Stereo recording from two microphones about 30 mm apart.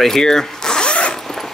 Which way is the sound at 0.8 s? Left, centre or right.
Left.